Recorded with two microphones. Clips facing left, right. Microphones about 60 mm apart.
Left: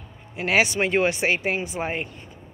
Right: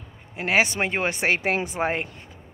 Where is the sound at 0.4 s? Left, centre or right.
Right.